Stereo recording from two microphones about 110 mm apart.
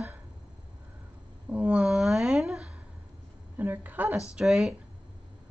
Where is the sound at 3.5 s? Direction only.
20° right (ahead or behind).